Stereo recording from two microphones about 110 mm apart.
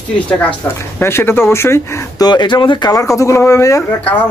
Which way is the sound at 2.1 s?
40° left (ahead or behind).